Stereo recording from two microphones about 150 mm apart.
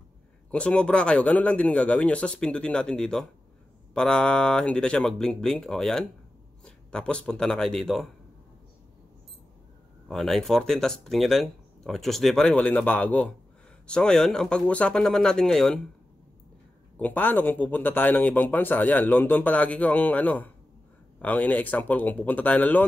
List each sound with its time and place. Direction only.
0.5 s a man's voice: 10° left (ahead or behind)
10.0 s speech: centre (ahead or behind)
16.9 s speech: 10° left (ahead or behind)